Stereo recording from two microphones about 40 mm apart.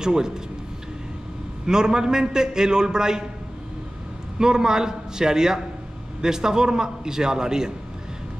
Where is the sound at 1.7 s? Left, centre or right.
Centre.